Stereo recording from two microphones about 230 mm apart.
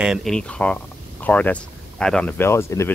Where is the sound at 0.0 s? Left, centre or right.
Centre.